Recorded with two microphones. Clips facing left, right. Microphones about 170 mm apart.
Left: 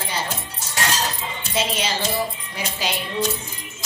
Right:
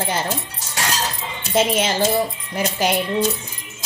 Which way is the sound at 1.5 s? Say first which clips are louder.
Right 6 dB; 50° right (ahead or behind).